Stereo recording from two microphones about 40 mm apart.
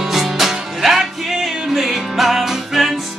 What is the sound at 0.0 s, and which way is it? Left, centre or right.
Music, centre.